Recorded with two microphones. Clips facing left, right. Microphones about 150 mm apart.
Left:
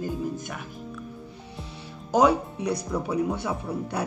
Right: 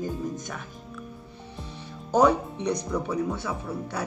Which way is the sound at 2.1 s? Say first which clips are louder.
Even; 10° left (ahead or behind).